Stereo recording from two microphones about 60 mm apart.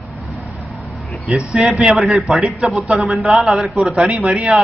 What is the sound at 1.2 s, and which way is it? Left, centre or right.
Speech, centre.